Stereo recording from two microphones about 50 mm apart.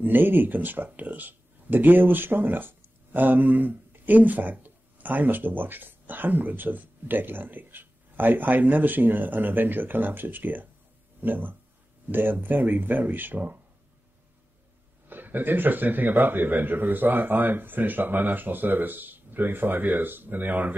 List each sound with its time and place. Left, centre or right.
0.0 s speech: right
15.0 s speech: right